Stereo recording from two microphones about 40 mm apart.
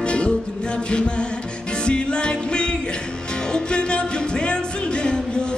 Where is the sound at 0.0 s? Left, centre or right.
Left.